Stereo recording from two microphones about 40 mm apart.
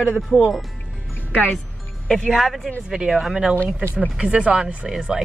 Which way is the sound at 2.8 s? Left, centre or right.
Centre.